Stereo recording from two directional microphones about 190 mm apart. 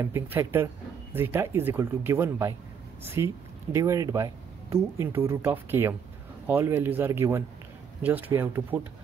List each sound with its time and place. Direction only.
0.0 s speech: 15° right (ahead or behind)